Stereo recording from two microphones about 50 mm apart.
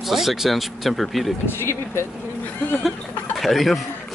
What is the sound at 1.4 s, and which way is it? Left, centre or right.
Speech, left.